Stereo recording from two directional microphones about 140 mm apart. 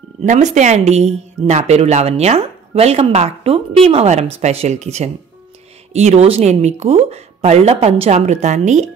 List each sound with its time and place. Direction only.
0.2 s speech: 60° right (ahead or behind)